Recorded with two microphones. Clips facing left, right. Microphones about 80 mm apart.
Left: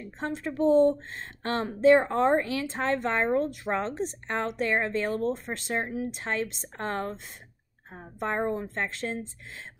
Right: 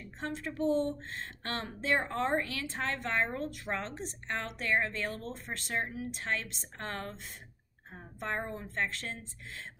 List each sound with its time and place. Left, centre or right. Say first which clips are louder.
0.0 s speech: left 6 dB; left